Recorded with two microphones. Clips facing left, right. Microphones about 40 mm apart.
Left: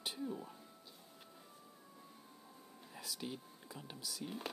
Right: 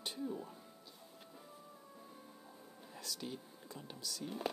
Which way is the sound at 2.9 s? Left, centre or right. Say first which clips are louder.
Even; centre.